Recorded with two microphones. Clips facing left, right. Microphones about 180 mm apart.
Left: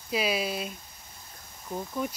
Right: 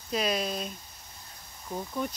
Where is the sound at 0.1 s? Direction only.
5° left (ahead or behind).